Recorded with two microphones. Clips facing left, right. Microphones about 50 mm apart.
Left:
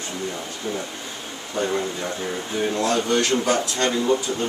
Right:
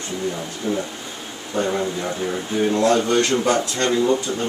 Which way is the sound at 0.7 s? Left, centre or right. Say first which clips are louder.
Right 5 dB; centre.